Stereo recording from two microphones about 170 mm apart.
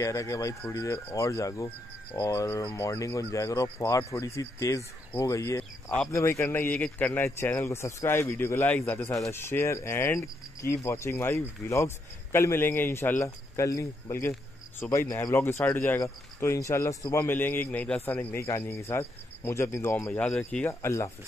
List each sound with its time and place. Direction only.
0.0 s speech: 20° left (ahead or behind)